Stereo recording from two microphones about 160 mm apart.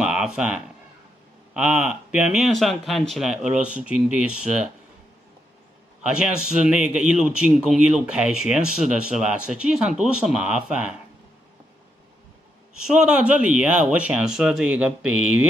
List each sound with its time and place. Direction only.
0.0 s a sound: 5° right (ahead or behind)
1.5 s a man's voice: 5° right (ahead or behind)
6.0 s a man's voice: 5° right (ahead or behind)
12.7 s speech: 5° right (ahead or behind)